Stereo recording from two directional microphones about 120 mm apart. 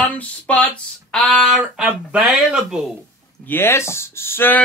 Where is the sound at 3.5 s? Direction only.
20° left (ahead or behind).